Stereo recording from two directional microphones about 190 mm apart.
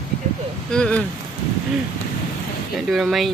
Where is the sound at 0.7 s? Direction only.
5° left (ahead or behind).